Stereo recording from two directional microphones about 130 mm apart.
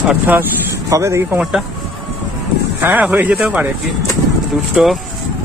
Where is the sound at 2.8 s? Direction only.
15° right (ahead or behind).